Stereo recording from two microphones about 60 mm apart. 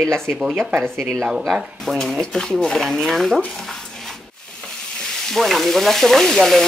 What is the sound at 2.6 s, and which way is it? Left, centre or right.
Speech, centre.